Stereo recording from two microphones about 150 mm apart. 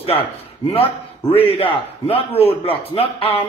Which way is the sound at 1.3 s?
40° left (ahead or behind).